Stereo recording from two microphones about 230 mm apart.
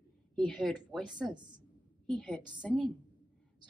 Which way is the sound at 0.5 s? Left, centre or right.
Centre.